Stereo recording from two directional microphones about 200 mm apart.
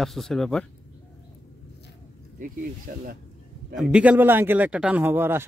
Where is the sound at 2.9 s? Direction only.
45° right (ahead or behind).